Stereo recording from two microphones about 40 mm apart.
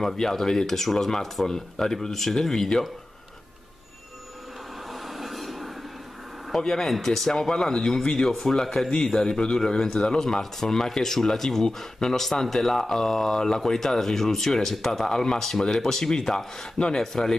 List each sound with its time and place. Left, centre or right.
0.0 s speech: centre
4.9 s train: centre
6.6 s speech: centre
8.3 s speech: centre